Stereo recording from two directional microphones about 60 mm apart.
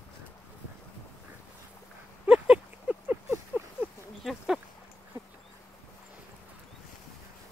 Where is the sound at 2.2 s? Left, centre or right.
Centre.